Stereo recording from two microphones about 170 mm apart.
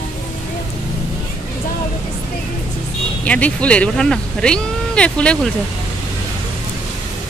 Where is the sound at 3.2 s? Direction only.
10° left (ahead or behind).